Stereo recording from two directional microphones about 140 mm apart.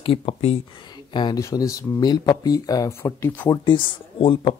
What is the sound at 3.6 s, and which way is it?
Speech, 35° left (ahead or behind).